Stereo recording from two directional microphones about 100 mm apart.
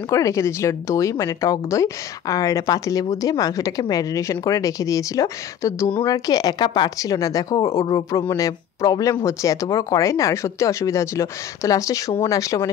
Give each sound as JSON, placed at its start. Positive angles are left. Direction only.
{"t": 0.1, "sound": "speech", "side_deg": 30}